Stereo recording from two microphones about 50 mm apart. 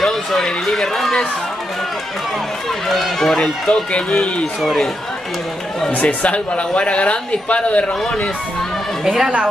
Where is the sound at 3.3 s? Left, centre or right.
Centre.